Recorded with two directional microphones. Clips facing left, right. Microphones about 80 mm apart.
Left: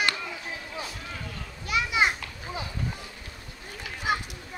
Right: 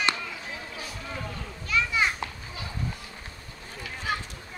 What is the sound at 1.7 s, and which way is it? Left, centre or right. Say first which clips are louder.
Children playing: left 1 dB; centre.